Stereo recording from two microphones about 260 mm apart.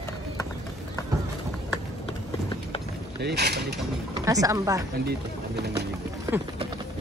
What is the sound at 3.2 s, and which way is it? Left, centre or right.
Mechanisms, right.